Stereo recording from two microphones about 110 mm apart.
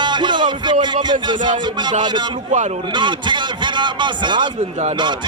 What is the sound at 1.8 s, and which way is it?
A man's voice, 45° right (ahead or behind).